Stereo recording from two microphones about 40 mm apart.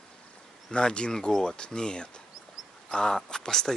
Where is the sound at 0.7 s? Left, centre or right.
Left.